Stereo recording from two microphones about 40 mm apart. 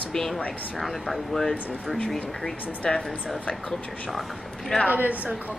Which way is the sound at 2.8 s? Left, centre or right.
Centre.